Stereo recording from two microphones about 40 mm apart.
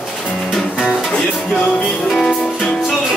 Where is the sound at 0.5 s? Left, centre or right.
Centre.